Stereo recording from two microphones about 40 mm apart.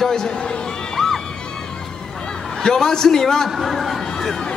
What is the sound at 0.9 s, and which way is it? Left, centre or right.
Music, centre.